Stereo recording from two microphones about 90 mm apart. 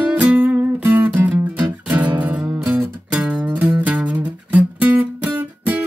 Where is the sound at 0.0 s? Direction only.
15° right (ahead or behind).